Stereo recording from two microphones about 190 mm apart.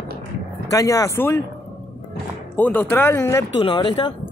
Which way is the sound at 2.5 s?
10° left (ahead or behind).